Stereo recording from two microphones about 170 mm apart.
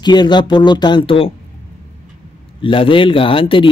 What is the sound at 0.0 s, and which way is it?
Speech, 25° left (ahead or behind).